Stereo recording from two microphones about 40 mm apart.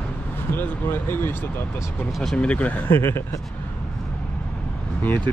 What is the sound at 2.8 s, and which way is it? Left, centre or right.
Speech, left.